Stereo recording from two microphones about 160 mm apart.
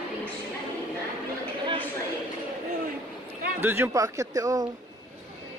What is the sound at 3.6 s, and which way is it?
Speech, 15° right (ahead or behind).